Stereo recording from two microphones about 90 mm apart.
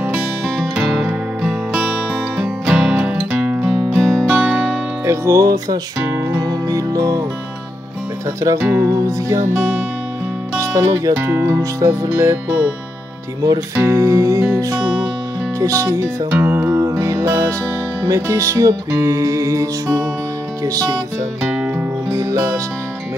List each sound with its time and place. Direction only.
0.6 s music: 5° right (ahead or behind)
4.0 s music: 5° right (ahead or behind)
5.0 s music: 35° right (ahead or behind)
8.5 s music: 25° right (ahead or behind)
10.6 s speech: 40° right (ahead or behind)
11.1 s music: 25° right (ahead or behind)
13.7 s music: 35° right (ahead or behind)
14.8 s music: 10° right (ahead or behind)
15.6 s music: 35° right (ahead or behind)
21.4 s music: 15° right (ahead or behind)
22.1 s music: 35° right (ahead or behind)